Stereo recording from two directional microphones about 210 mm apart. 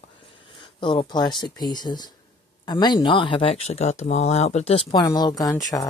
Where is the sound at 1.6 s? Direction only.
20° left (ahead or behind).